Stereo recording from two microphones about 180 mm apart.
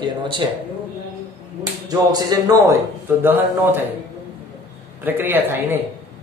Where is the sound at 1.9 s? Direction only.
20° right (ahead or behind).